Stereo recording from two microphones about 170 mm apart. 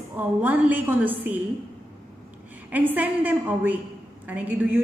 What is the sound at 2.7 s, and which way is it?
A woman's voice, 10° right (ahead or behind).